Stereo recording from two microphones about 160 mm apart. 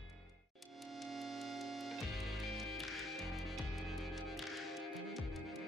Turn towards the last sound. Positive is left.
turn(degrees=0)  # may be behind; listen again after turning